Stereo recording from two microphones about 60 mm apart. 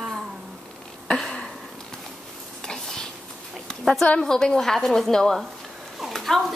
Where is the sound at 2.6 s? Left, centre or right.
Centre.